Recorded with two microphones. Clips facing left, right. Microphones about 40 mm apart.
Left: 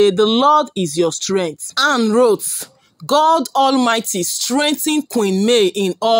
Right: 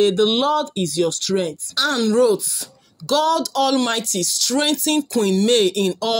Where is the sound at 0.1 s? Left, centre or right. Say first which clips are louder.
Left 5 dB; left.